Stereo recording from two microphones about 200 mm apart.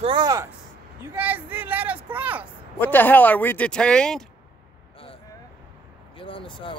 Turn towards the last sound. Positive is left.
turn(degrees=25)  # may be behind; listen again after turning